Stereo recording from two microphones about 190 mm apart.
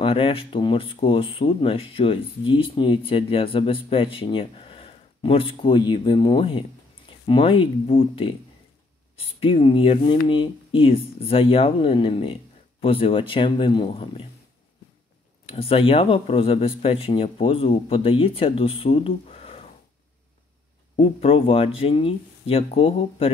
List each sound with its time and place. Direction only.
0.0 s speech: 30° left (ahead or behind)
15.4 s speech: 30° left (ahead or behind)
20.9 s speech: 30° left (ahead or behind)